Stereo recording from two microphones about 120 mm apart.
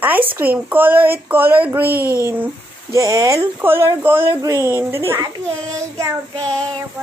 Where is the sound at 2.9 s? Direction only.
30° right (ahead or behind).